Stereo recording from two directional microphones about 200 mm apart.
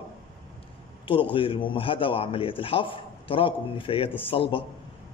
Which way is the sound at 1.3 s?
25° left (ahead or behind).